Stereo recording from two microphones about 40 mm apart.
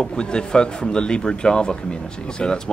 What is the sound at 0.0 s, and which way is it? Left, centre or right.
Speech, left.